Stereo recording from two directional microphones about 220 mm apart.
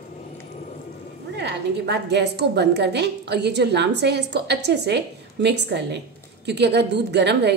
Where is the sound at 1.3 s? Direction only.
50° right (ahead or behind).